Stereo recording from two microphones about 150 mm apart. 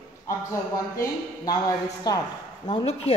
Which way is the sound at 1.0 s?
25° left (ahead or behind).